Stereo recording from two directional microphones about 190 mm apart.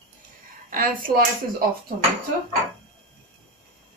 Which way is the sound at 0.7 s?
50° right (ahead or behind).